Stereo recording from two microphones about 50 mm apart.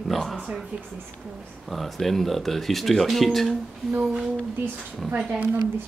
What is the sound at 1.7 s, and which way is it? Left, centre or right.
Speech, centre.